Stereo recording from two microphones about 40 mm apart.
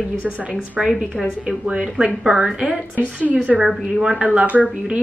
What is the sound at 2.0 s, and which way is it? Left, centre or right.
Speech, centre.